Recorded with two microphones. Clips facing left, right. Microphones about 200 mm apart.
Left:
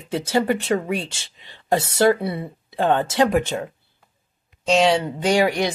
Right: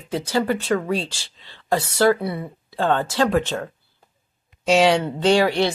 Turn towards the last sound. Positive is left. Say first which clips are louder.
# right 1 dB
turn(degrees=15)  # may be behind; listen again after turning